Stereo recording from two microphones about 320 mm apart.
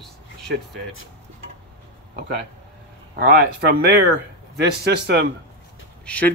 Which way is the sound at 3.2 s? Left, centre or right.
Right.